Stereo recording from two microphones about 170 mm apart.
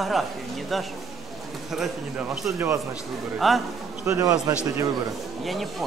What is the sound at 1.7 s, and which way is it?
A woman's voice, centre (ahead or behind).